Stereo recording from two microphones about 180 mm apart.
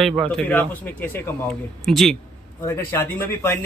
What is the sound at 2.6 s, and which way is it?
Speech, 15° left (ahead or behind).